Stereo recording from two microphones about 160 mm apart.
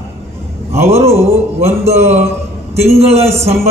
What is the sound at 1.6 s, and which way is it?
Speech, 15° right (ahead or behind).